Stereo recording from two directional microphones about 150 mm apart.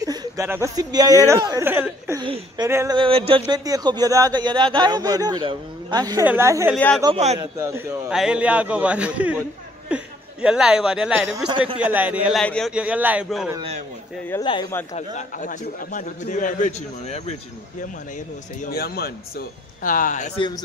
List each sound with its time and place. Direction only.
0.0 s a sound: 25° right (ahead or behind)
0.5 s speech: 20° right (ahead or behind)
2.2 s speech: 35° right (ahead or behind)
2.6 s speech: 20° right (ahead or behind)
3.0 s a man's voice: 40° right (ahead or behind); by 8.1 s 15° right (ahead or behind)
8.1 s a man's voice: 5° right (ahead or behind)
11.3 s speech: 30° right (ahead or behind)
11.8 s a man's voice: 10° right (ahead or behind)
12.4 s a man's voice: 5° left (ahead or behind)
12.7 s a man's voice: 10° right (ahead or behind)
14.4 s a man's voice: 35° left (ahead or behind)
15.0 s a man's voice: 55° left (ahead or behind)
18.6 s a man's voice: 90° left; by 20.2 s 60° left (ahead or behind)
20.3 s a man's voice: 30° left (ahead or behind)